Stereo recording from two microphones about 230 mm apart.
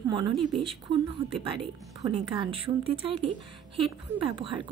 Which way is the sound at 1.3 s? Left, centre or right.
Right.